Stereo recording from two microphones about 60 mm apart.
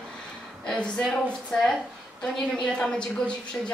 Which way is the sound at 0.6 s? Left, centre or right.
Centre.